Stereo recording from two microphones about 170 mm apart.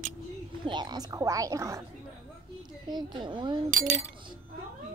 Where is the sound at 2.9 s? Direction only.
25° right (ahead or behind).